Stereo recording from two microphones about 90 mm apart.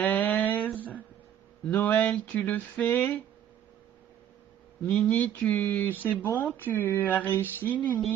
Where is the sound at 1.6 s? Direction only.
20° left (ahead or behind).